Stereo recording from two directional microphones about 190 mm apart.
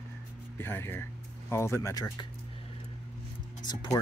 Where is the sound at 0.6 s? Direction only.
10° left (ahead or behind).